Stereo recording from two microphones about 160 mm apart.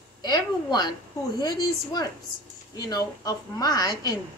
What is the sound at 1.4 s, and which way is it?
A woman's voice, 25° left (ahead or behind).